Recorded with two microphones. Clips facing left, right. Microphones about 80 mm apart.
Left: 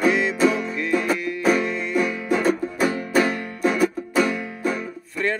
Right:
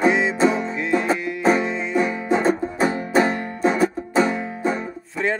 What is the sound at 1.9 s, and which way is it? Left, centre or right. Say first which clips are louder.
Music: right 2 dB; right.